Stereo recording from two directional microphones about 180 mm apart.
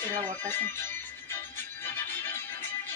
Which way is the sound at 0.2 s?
10° left (ahead or behind).